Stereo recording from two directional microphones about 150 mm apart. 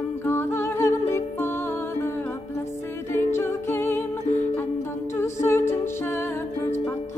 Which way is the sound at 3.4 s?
20° left (ahead or behind).